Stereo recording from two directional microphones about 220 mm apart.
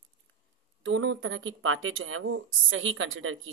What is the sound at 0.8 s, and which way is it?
Speech, 60° right (ahead or behind).